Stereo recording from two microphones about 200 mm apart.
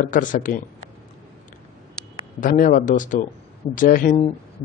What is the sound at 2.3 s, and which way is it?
Speech, 40° left (ahead or behind).